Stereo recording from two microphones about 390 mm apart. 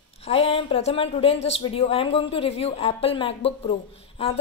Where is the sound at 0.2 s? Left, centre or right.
Centre.